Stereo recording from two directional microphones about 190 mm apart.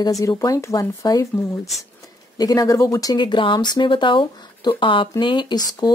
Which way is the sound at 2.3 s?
20° left (ahead or behind).